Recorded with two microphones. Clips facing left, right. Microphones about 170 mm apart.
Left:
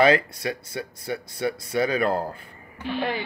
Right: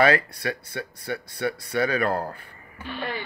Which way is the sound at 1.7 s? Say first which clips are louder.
Left 1 dB; 25° left (ahead or behind).